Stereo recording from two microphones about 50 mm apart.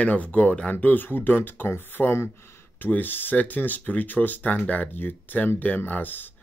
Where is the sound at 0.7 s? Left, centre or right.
Left.